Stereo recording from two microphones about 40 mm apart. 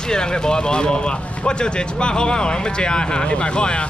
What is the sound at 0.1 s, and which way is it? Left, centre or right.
Speech, centre.